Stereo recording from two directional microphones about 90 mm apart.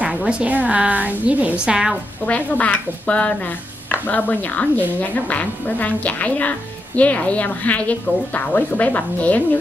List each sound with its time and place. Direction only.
0.0 s a woman's voice: 10° right (ahead or behind)
2.2 s speech: 15° left (ahead or behind)